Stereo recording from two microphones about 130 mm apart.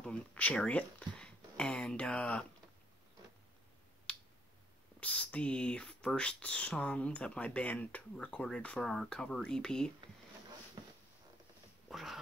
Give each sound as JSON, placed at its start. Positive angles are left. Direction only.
{"t": 0.0, "sound": "speech", "side_deg": 10}
{"t": 4.1, "sound": "clicking", "side_deg": 10}
{"t": 5.0, "sound": "speech", "side_deg": 10}
{"t": 10.8, "sound": "a sound", "side_deg": -35}
{"t": 11.9, "sound": "speech", "side_deg": 0}